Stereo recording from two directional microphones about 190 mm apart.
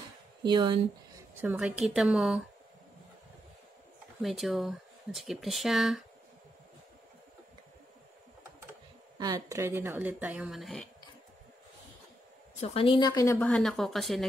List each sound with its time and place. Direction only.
0.4 s speech: 25° right (ahead or behind)
1.4 s speech: 5° right (ahead or behind)
4.2 s speech: centre (ahead or behind)
9.2 s speech: 20° right (ahead or behind); by 10.9 s centre (ahead or behind)
12.5 s a woman's voice: 30° left (ahead or behind); by 14.2 s centre (ahead or behind)